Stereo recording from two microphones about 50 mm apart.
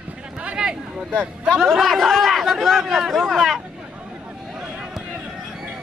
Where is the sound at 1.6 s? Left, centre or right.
Centre.